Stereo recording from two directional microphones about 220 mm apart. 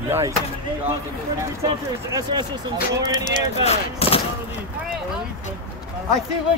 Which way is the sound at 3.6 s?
25° left (ahead or behind).